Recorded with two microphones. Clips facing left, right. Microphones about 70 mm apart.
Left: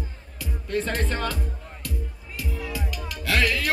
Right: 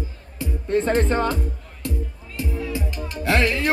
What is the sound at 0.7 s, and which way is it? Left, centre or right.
Music, right.